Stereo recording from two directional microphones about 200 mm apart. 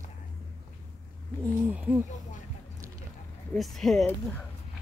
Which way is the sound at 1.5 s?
10° right (ahead or behind).